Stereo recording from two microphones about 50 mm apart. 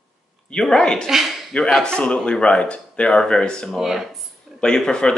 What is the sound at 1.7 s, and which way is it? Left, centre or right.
Speech, centre.